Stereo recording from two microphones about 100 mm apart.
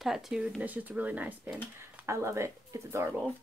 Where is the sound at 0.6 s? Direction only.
15° right (ahead or behind).